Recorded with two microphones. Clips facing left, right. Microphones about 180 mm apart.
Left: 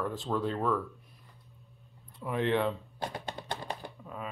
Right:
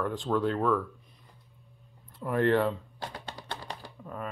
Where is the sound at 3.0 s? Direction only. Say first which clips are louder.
Left 5 dB; 25° left (ahead or behind).